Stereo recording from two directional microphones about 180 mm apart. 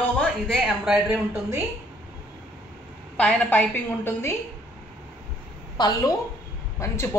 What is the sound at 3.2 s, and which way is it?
A woman's voice, 5° left (ahead or behind).